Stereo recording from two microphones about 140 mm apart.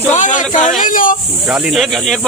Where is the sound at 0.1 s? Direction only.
65° left (ahead or behind).